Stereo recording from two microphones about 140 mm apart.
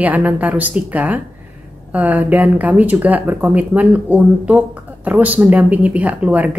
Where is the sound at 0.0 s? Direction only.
10° right (ahead or behind).